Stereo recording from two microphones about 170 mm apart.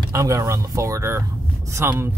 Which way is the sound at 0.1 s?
20° right (ahead or behind).